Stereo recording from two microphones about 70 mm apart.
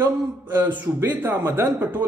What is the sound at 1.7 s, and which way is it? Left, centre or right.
Speech, right.